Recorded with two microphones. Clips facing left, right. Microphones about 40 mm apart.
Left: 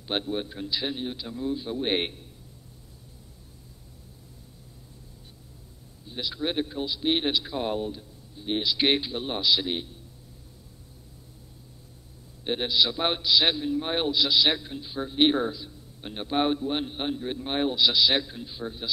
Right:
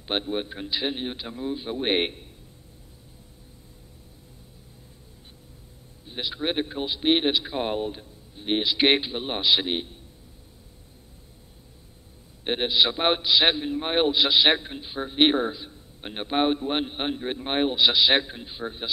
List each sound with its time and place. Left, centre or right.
0.0 s a man's voice: right
6.0 s a man's voice: right
12.4 s a man's voice: right